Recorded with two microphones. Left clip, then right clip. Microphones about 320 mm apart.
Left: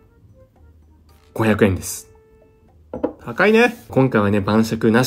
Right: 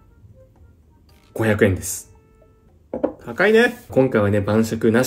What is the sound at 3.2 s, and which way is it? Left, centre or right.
Speech, left.